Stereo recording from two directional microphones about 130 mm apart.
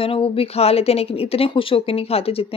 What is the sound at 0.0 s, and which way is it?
Speech, 45° left (ahead or behind).